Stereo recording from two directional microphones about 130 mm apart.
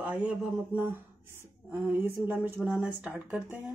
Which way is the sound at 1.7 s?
15° right (ahead or behind).